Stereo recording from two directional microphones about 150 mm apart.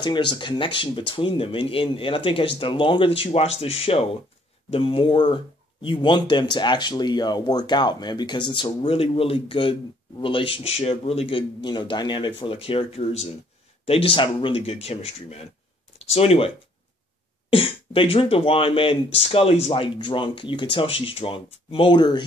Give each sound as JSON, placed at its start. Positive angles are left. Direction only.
{"t": 0.0, "sound": "speech", "side_deg": 30}